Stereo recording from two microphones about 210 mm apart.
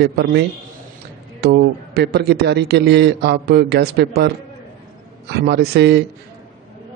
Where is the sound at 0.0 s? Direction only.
50° right (ahead or behind).